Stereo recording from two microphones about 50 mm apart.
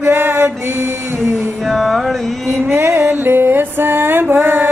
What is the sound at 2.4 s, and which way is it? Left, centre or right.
Music, right.